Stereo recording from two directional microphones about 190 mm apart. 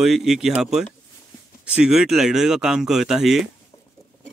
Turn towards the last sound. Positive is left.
turn(degrees=0)  # may be behind; listen again after turning